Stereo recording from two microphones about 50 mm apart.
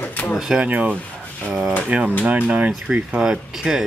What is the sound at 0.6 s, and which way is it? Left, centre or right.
Speech, right.